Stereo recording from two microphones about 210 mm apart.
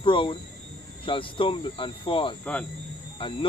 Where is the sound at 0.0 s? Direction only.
25° left (ahead or behind).